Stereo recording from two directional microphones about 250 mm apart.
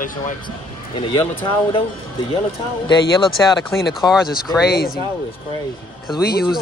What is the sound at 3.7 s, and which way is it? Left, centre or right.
Speech, centre.